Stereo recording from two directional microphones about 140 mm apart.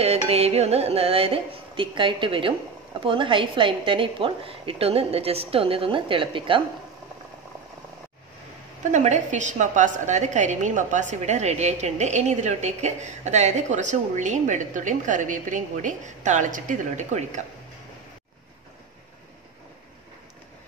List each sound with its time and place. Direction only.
0.0 s a woman's voice: 45° right (ahead or behind)
8.9 s a woman's voice: 60° right (ahead or behind)